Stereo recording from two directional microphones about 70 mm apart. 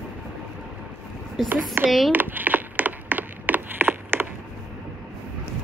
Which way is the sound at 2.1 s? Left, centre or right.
Right.